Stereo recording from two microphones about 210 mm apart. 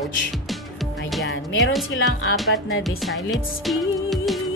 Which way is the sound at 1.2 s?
60° left (ahead or behind).